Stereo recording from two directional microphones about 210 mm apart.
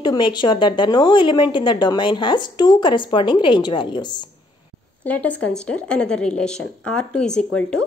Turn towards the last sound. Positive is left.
turn(degrees=5)  # may be behind; listen again after turning